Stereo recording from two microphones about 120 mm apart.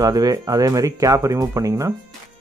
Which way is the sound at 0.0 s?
30° right (ahead or behind).